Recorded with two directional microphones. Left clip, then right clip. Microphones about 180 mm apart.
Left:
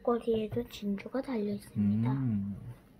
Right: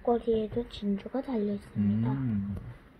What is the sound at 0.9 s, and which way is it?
Speech, 15° right (ahead or behind).